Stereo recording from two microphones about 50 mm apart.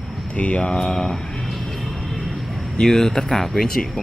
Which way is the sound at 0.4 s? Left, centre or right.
Left.